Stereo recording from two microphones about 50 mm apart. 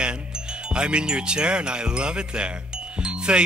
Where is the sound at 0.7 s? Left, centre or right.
Centre.